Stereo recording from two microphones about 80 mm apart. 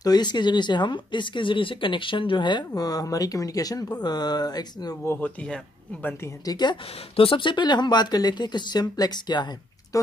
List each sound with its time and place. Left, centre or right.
0.0 s speech: left
2.8 s speech: left
4.0 s speech: left
5.2 s speech: centre
6.4 s speech: left
7.2 s speech: left